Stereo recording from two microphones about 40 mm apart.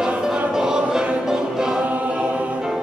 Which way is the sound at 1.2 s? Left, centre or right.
Centre.